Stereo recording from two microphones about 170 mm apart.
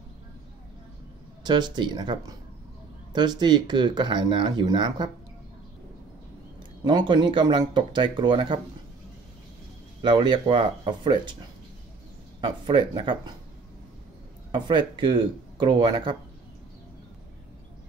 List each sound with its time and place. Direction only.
1.4 s speech: 25° right (ahead or behind)
6.8 s speech: 25° right (ahead or behind)
10.0 s speech: 25° right (ahead or behind)
12.4 s speech: 30° right (ahead or behind)
14.5 s speech: 30° right (ahead or behind)